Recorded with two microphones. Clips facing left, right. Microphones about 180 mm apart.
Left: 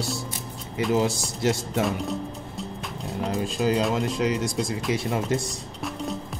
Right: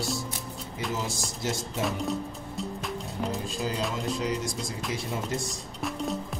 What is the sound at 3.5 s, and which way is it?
Speech, 70° left (ahead or behind).